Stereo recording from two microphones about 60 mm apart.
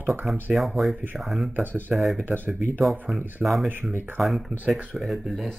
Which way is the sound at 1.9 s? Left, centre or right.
Centre.